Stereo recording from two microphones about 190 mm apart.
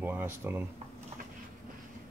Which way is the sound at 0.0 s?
10° right (ahead or behind).